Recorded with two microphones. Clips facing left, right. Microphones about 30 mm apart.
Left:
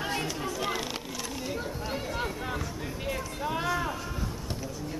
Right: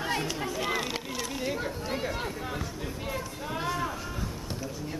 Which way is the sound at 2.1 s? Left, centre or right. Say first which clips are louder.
Left 1 dB; centre.